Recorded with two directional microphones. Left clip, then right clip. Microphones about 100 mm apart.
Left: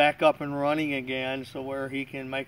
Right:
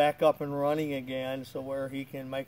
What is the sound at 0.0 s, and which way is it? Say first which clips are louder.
Speech: left 3 dB; 40° right (ahead or behind).